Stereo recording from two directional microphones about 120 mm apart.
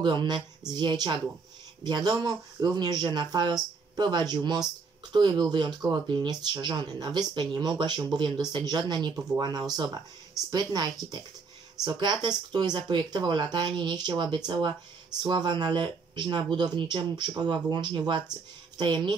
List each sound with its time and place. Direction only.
0.0 s speech: 40° right (ahead or behind)